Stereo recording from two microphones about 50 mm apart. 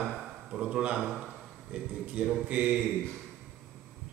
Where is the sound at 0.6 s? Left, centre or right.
Right.